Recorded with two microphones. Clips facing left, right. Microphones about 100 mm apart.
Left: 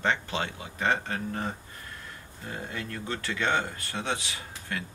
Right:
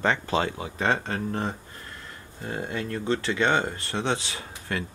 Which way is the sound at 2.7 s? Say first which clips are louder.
Right 9 dB; 25° right (ahead or behind).